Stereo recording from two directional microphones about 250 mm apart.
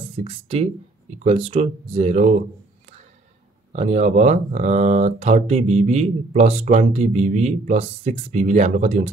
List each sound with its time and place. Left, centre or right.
0.2 s speech: right
3.7 s speech: right